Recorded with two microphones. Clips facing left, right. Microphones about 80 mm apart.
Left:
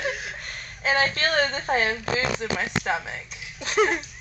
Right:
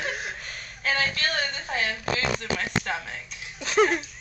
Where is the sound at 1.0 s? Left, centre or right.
Left.